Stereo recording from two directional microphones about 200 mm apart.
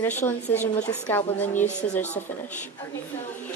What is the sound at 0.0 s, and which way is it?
A woman's voice, 10° left (ahead or behind).